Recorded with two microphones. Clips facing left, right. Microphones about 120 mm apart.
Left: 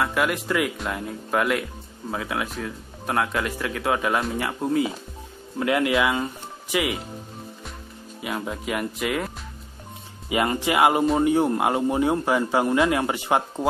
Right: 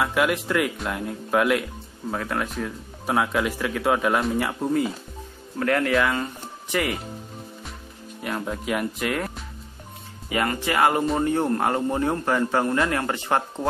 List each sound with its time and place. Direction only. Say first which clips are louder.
0.0 s a man's voice: right 1 dB; centre (ahead or behind)
8.2 s speech: right 1 dB; 5° left (ahead or behind)
10.3 s a man's voice: left 2 dB; 20° left (ahead or behind)